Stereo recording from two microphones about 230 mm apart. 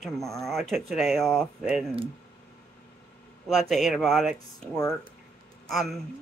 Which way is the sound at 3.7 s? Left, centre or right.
Centre.